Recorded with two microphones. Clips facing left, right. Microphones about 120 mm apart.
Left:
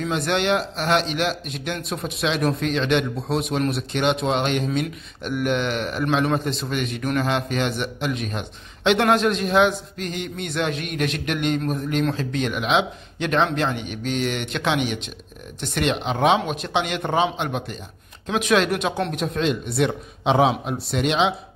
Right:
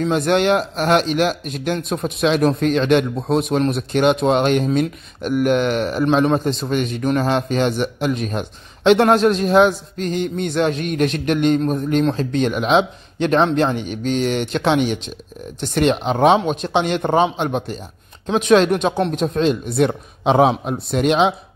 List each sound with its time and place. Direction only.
0.0 s a man's voice: 45° right (ahead or behind)